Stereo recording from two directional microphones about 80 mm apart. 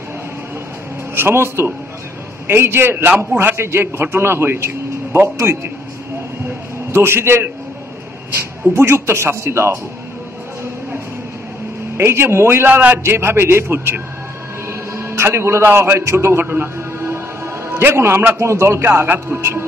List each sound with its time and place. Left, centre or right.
1.1 s a man's voice: right
6.9 s a man's voice: right
8.7 s a man's voice: right
12.0 s a man's voice: right
14.7 s music: right
16.0 s a man's voice: right